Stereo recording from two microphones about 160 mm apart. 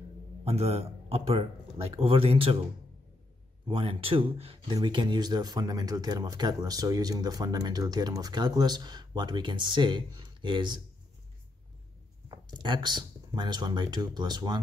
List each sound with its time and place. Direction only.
0.5 s speech: 40° right (ahead or behind)
3.6 s speech: 35° right (ahead or behind)
12.3 s speech: 30° right (ahead or behind)